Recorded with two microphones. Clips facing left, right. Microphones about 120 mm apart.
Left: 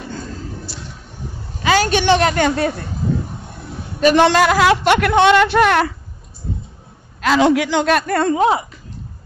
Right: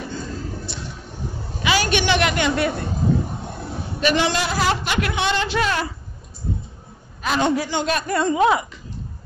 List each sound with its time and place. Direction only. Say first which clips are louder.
1.6 s a woman's voice: left 5 dB; 40° left (ahead or behind)
4.0 s a man's voice: left 8 dB; 50° left (ahead or behind)
4.3 s speech: left 8 dB; 75° left (ahead or behind)
7.2 s a man's voice: left 6 dB; 90° left; by 8.4 s 55° left (ahead or behind)
8.4 s speech: right 1 dB; 30° left (ahead or behind)